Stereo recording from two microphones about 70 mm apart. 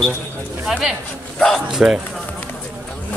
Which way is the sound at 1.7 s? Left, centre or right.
Centre.